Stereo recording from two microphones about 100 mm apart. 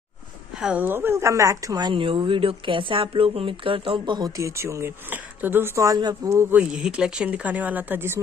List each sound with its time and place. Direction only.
0.6 s speech: 5° right (ahead or behind)
0.8 s speech: 20° right (ahead or behind)
1.9 s speech: 55° right (ahead or behind)
4.4 s speech: 30° right (ahead or behind)
6.6 s speech: 10° right (ahead or behind)